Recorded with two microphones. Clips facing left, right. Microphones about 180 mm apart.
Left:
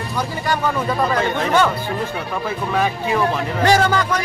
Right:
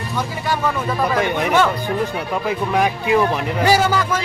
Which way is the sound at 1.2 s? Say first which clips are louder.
Right 2 dB; 15° right (ahead or behind).